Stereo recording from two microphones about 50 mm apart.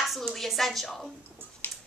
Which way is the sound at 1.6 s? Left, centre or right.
Left.